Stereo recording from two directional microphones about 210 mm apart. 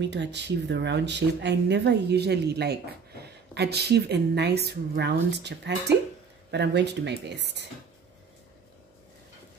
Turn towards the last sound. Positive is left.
turn(degrees=-55)  # may be behind; listen again after turning